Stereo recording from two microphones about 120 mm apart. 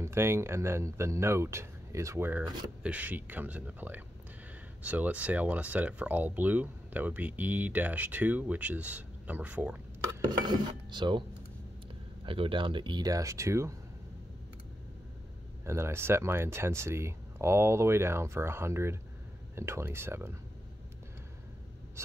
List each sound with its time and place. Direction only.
0.0 s speech: 20° right (ahead or behind)
10.2 s speech: 40° right (ahead or behind)
12.3 s speech: 45° right (ahead or behind); by 13.7 s 25° right (ahead or behind)
15.6 s speech: 20° right (ahead or behind)